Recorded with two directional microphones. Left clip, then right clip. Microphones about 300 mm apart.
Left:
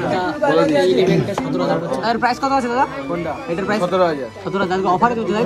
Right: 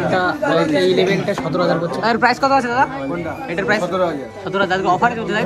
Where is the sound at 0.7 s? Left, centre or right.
Right.